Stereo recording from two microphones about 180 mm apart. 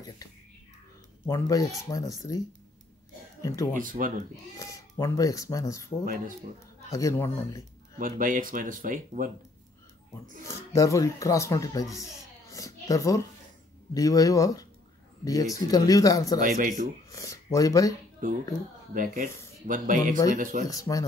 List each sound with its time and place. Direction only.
1.2 s speech: 20° left (ahead or behind)
3.8 s speech: 50° right (ahead or behind)
4.6 s speech: 20° left (ahead or behind)
8.0 s speech: 50° right (ahead or behind)
10.4 s speech: 15° left (ahead or behind)
12.4 s a sound: 20° left (ahead or behind)
13.9 s speech: 20° left (ahead or behind)
16.3 s speech: 45° right (ahead or behind)
17.1 s speech: 20° left (ahead or behind)
18.2 s speech: 50° right (ahead or behind)
20.6 s speech: 20° left (ahead or behind)